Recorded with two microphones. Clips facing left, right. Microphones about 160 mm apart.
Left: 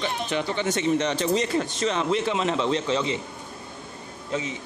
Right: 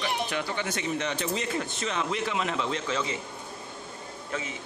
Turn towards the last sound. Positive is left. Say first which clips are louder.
# left 5 dB
turn(degrees=20)  # may be behind; listen again after turning